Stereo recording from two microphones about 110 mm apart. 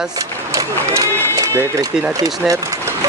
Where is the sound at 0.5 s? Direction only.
30° right (ahead or behind).